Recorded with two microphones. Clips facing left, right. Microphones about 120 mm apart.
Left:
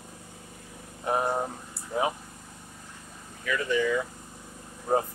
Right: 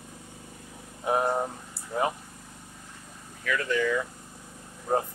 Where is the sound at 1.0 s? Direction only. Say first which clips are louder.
Right 1 dB; 5° right (ahead or behind).